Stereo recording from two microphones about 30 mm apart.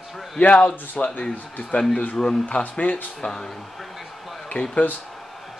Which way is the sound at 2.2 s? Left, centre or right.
Centre.